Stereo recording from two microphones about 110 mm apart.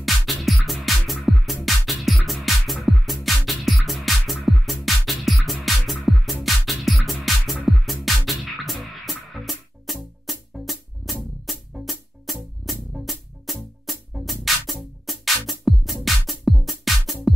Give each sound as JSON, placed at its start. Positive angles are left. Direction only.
{"t": 0.0, "sound": "music", "side_deg": 0}